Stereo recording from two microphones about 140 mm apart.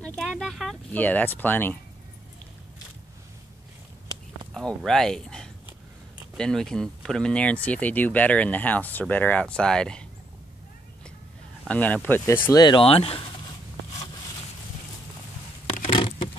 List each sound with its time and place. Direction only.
0.0 s speech: 5° left (ahead or behind)
0.9 s speech: 10° left (ahead or behind)
4.6 s speech: 5° left (ahead or behind)
11.6 s speech: 10° left (ahead or behind)
12.5 s speech: 35° left (ahead or behind)
15.9 s patter: 40° left (ahead or behind)